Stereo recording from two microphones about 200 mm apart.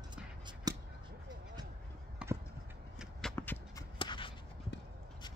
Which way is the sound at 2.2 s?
5° right (ahead or behind).